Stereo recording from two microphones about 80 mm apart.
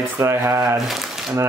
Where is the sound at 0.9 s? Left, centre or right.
Centre.